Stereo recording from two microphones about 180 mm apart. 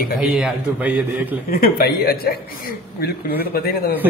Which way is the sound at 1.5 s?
55° left (ahead or behind).